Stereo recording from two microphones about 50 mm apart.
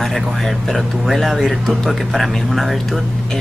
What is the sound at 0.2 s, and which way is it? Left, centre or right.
Speech, centre.